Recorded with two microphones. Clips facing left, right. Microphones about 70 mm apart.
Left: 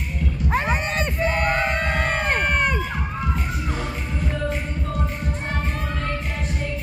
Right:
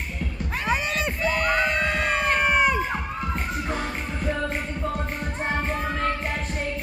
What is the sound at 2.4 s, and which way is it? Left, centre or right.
Crowd, centre.